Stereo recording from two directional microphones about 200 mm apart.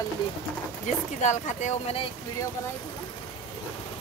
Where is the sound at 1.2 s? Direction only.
35° left (ahead or behind).